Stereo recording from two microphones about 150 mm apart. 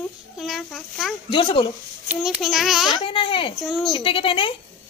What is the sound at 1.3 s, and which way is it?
Speech, 35° left (ahead or behind).